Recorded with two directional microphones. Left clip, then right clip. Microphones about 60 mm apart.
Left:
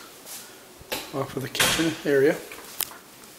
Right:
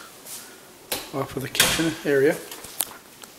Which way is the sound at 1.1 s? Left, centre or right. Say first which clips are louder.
Right 3 dB; centre.